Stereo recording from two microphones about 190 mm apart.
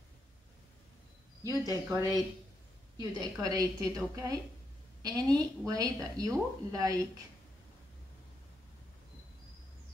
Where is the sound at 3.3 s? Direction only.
20° right (ahead or behind).